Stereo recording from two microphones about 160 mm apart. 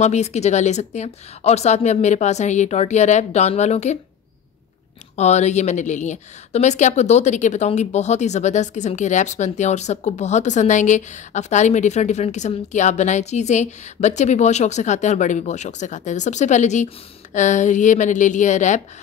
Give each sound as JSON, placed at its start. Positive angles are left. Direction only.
{"t": 0.0, "sound": "a woman's voice", "side_deg": 45}
{"t": 5.1, "sound": "a woman's voice", "side_deg": 45}